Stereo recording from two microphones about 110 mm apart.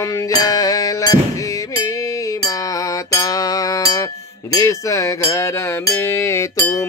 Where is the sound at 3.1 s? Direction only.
35° left (ahead or behind).